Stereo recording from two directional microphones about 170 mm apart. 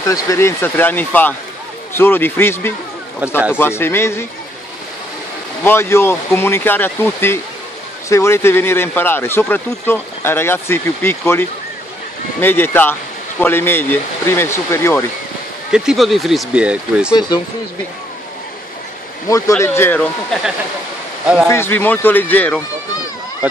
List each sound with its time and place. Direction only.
0.1 s speech: 15° left (ahead or behind)
5.6 s speech: 15° left (ahead or behind)
15.7 s speech: 5° right (ahead or behind)
19.2 s speech: 20° left (ahead or behind)
21.5 s speech: 15° left (ahead or behind)